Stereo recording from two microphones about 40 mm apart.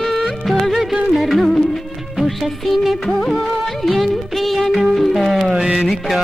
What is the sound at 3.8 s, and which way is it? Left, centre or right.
Music, centre.